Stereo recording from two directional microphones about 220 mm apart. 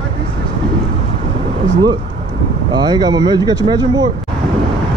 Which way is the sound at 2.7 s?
20° right (ahead or behind).